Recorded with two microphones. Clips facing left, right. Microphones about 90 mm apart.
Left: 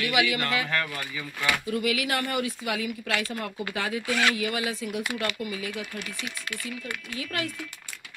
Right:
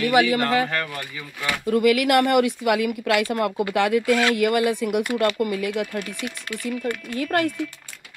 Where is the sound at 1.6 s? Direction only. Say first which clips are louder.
Right 9 dB; 50° right (ahead or behind).